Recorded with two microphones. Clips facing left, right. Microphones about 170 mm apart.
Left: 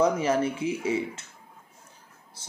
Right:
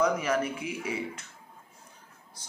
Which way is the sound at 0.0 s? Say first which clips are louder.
Left 3 dB; 30° left (ahead or behind).